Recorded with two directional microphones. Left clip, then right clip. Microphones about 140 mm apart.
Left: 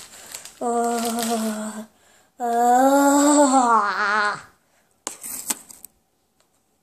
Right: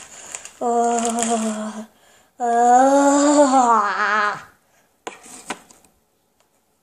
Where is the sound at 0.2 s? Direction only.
5° left (ahead or behind).